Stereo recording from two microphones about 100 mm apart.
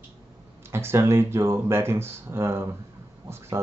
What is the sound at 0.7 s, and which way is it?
Speech, 25° right (ahead or behind).